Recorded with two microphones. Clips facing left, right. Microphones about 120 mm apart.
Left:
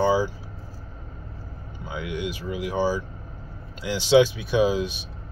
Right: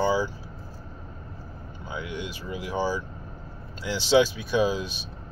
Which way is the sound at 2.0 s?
15° left (ahead or behind).